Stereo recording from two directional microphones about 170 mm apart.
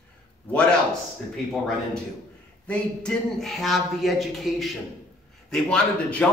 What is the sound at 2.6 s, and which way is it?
A man's voice, 5° left (ahead or behind).